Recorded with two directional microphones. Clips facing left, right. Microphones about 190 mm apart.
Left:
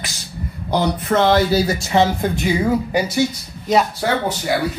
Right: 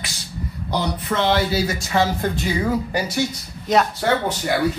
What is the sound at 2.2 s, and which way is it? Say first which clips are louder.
Speech: left 3 dB; 15° left (ahead or behind).